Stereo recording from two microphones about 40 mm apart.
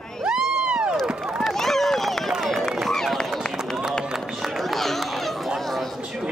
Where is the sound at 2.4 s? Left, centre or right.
Centre.